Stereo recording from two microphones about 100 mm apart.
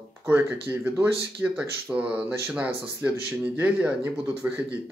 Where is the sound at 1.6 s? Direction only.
10° right (ahead or behind).